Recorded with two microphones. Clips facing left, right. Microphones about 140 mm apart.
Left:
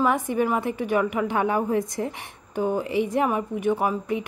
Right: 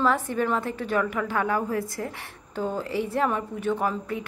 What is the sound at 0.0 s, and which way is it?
A woman's voice, 15° left (ahead or behind).